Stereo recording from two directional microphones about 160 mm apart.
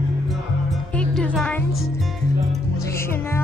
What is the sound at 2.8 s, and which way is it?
Music, 15° left (ahead or behind).